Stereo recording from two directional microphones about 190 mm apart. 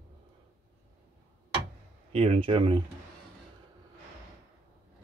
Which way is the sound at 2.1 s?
30° right (ahead or behind).